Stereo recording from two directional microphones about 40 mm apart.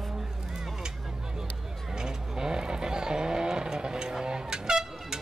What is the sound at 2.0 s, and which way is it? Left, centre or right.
Vehicle, centre.